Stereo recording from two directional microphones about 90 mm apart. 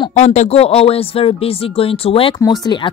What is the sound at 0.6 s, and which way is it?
Speech, 90° left.